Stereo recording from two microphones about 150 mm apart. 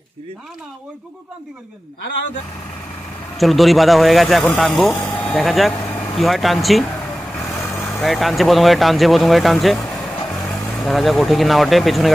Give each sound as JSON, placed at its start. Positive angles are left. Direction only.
{"t": 3.3, "sound": "speech", "side_deg": 0}
{"t": 4.8, "sound": "speech", "side_deg": 15}
{"t": 7.5, "sound": "vehicle", "side_deg": 15}
{"t": 8.0, "sound": "speech", "side_deg": 0}